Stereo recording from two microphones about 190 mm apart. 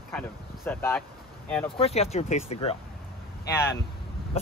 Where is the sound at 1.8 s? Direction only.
35° left (ahead or behind).